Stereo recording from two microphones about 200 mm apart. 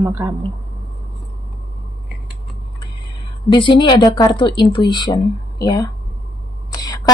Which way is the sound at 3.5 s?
25° left (ahead or behind).